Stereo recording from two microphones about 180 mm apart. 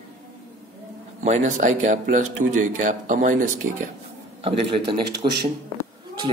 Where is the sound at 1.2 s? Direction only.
40° right (ahead or behind).